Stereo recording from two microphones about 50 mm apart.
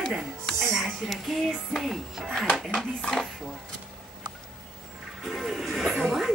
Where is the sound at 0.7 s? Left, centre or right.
Centre.